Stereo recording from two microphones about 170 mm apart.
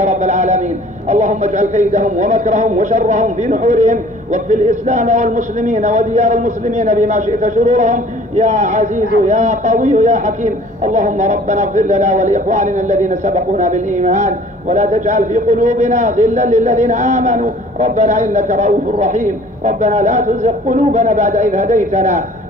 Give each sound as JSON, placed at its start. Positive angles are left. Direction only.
{"t": 0.0, "sound": "a man's voice", "side_deg": -45}